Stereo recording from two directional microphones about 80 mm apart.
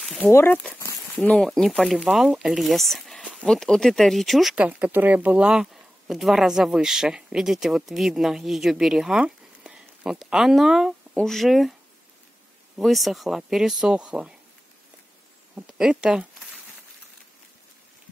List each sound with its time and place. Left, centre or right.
0.3 s speech: left
1.1 s speech: centre
4.6 s speech: centre
12.7 s speech: centre
15.5 s speech: centre